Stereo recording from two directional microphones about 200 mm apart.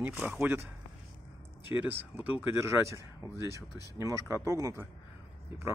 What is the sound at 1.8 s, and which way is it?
Speech, 10° right (ahead or behind).